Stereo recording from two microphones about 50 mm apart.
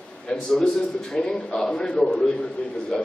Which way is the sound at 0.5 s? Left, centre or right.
Centre.